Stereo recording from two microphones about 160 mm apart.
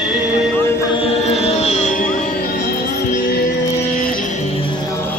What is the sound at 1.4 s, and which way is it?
Music, 40° left (ahead or behind).